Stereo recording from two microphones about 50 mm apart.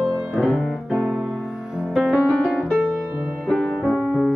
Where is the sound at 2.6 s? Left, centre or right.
Centre.